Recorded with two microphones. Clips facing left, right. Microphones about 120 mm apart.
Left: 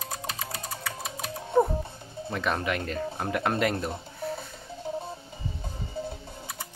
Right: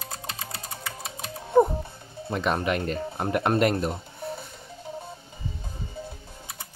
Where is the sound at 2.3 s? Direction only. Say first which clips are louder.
Right 3 dB; 20° right (ahead or behind).